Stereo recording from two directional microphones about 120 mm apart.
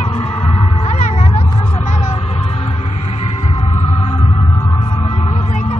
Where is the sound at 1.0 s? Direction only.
60° left (ahead or behind).